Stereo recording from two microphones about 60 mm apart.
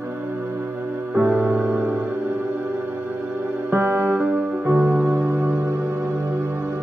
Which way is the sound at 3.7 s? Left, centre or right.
Right.